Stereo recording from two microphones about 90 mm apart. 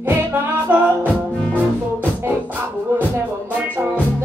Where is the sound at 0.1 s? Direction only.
25° right (ahead or behind).